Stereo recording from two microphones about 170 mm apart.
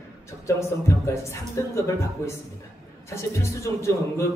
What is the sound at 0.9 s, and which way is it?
Speech, 15° left (ahead or behind).